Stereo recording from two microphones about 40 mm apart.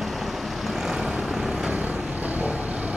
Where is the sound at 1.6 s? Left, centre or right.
Right.